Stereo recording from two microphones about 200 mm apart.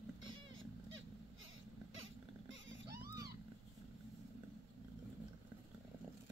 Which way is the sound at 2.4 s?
70° right (ahead or behind).